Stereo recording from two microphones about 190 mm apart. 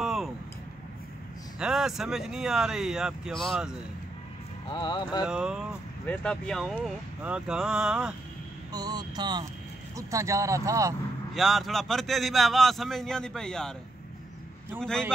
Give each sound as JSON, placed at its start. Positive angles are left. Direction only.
{"t": 0.0, "sound": "a sound", "side_deg": 0}
{"t": 1.6, "sound": "a man's voice", "side_deg": -5}
{"t": 4.6, "sound": "speech", "side_deg": 25}
{"t": 5.2, "sound": "a man's voice", "side_deg": -5}
{"t": 8.7, "sound": "vehicle", "side_deg": -20}
{"t": 9.9, "sound": "speech", "side_deg": -15}
{"t": 11.3, "sound": "a man's voice", "side_deg": 0}
{"t": 14.8, "sound": "a man's voice", "side_deg": 5}